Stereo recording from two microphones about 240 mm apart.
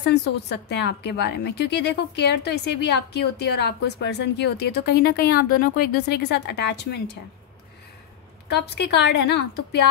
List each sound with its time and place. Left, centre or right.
0.0 s a woman's voice: left
8.5 s a woman's voice: left